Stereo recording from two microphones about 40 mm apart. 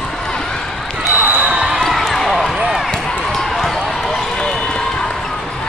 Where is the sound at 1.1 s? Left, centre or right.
Right.